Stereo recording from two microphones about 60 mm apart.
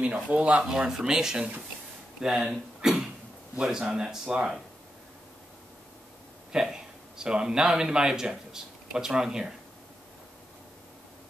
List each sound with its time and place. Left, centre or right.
0.0 s speech: right; by 2.4 s centre
2.8 s cough: centre
3.5 s speech: centre
6.5 s a man's voice: centre